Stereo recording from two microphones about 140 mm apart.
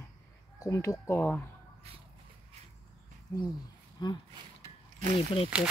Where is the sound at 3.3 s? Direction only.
25° left (ahead or behind).